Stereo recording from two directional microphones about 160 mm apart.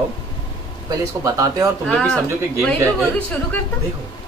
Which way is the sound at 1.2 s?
20° right (ahead or behind).